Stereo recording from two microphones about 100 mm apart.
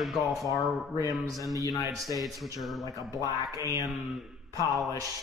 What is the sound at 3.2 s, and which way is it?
Speech, 35° right (ahead or behind).